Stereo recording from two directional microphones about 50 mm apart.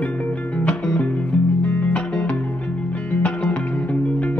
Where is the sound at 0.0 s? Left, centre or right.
Left.